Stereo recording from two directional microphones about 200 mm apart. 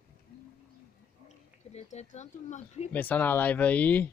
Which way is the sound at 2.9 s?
10° left (ahead or behind).